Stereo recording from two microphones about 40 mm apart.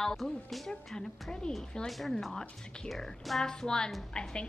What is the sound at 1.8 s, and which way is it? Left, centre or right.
Speech, centre.